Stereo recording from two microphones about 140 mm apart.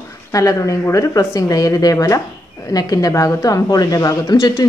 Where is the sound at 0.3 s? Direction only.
25° left (ahead or behind).